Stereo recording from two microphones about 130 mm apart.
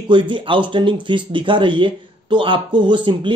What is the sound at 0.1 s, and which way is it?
Speech, 40° right (ahead or behind).